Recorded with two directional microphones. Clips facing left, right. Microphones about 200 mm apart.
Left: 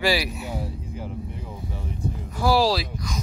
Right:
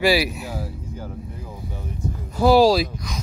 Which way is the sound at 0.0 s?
10° right (ahead or behind).